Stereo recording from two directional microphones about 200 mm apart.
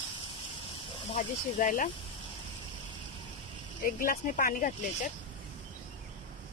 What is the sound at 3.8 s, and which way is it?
Speech, 45° left (ahead or behind).